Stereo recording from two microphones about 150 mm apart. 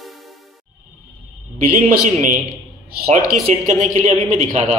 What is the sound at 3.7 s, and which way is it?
A man's voice, 55° right (ahead or behind).